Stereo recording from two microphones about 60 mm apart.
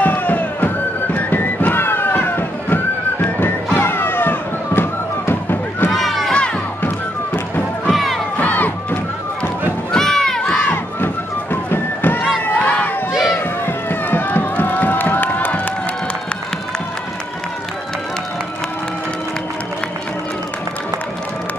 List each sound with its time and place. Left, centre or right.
0.0 s music: left
5.9 s a sound: centre
7.9 s crowd: centre
8.4 s crowd: left
9.9 s crowd: centre
11.7 s run: left
12.6 s crowd: left
13.1 s a sound: centre
13.7 s crowd: left